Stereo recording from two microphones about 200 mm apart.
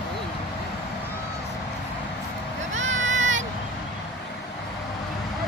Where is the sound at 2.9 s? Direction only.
70° right (ahead or behind).